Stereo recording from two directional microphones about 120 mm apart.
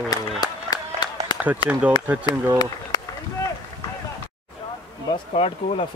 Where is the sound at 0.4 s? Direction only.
35° left (ahead or behind).